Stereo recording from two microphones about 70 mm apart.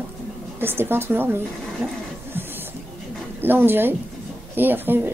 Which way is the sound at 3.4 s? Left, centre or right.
Right.